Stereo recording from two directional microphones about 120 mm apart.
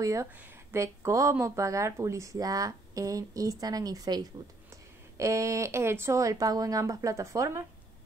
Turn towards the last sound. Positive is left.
turn(degrees=-25)  # may be behind; listen again after turning